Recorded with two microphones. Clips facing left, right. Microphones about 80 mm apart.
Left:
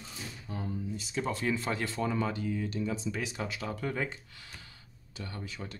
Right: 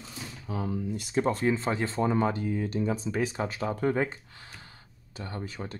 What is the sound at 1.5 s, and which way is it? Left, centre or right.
Speech, right.